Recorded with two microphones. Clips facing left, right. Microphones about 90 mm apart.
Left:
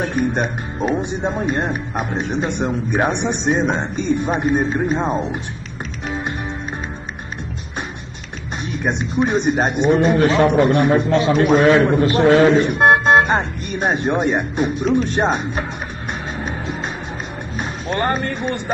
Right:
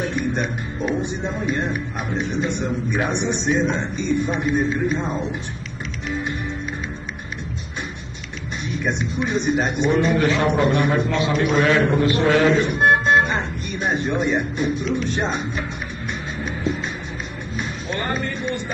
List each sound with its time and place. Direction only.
0.1 s a man's voice: 45° left (ahead or behind)
2.4 s a man's voice: 60° left (ahead or behind); by 5.2 s 40° left (ahead or behind)
6.0 s music: 45° left (ahead or behind)
8.7 s a man's voice: 50° left (ahead or behind)
10.1 s a man's voice: 40° left (ahead or behind)
12.5 s speech: 50° left (ahead or behind)
16.3 s music: 45° left (ahead or behind)
17.6 s speech: 50° left (ahead or behind)